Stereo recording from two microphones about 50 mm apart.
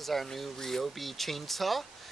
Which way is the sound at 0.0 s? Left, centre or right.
Centre.